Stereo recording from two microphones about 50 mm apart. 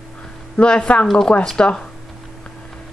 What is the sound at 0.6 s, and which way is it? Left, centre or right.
Speech, left.